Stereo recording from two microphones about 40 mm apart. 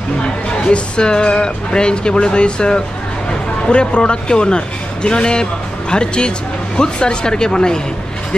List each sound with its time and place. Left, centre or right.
0.5 s a man's voice: left